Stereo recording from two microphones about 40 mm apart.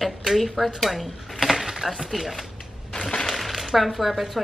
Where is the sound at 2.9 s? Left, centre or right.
Centre.